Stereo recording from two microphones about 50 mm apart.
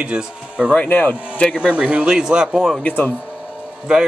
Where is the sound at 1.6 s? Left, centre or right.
Right.